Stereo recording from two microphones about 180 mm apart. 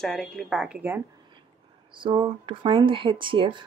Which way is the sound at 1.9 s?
25° right (ahead or behind).